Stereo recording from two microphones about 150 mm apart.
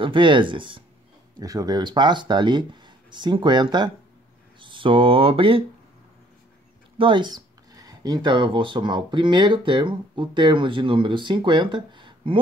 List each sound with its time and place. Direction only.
0.0 s speech: 35° right (ahead or behind)
1.4 s speech: 25° right (ahead or behind)
7.0 s speech: 35° right (ahead or behind)